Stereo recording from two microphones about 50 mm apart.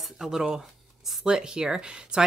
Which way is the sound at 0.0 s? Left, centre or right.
Centre.